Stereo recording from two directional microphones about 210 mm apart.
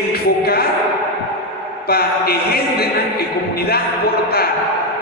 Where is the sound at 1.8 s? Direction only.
50° left (ahead or behind).